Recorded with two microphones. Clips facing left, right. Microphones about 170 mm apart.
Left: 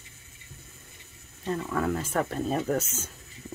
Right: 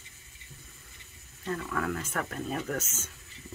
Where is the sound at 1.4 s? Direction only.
25° left (ahead or behind).